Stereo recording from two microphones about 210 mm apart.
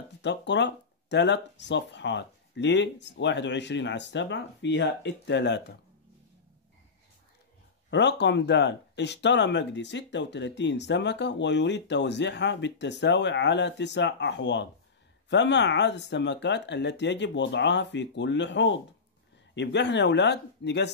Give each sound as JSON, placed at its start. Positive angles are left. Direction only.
{"t": 0.2, "sound": "speech", "side_deg": 55}
{"t": 7.9, "sound": "speech", "side_deg": 55}